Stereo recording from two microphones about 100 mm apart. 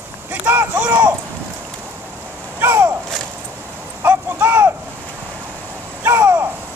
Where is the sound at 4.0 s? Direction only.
20° right (ahead or behind).